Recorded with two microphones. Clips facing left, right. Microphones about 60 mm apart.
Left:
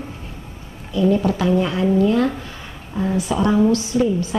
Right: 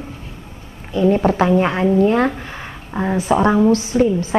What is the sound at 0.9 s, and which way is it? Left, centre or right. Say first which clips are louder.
A woman's voice: right 3 dB; right.